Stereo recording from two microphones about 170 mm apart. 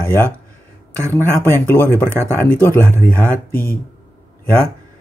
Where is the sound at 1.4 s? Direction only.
15° left (ahead or behind).